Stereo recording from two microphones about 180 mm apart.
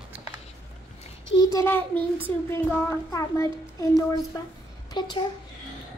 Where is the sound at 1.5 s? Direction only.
15° left (ahead or behind).